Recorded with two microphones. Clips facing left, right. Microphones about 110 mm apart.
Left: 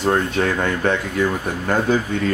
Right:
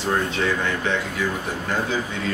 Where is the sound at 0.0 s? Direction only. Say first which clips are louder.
Left 4 dB; 50° left (ahead or behind).